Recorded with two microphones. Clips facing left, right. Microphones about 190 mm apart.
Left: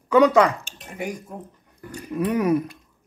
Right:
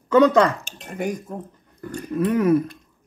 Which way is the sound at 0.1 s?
10° left (ahead or behind).